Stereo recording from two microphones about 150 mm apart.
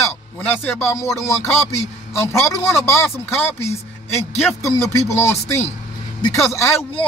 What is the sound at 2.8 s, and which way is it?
A man's voice, 15° left (ahead or behind).